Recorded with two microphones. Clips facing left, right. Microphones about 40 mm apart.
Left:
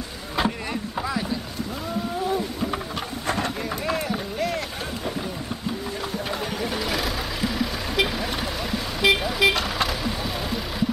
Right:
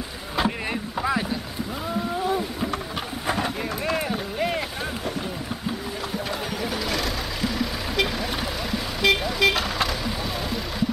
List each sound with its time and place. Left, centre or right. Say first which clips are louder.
0.4 s rowboat: even; centre
1.0 s boat: right 4 dB; right
2.2 s whale vocalization: even; centre
3.3 s a sound: even; centre
6.1 s vehicle: even; centre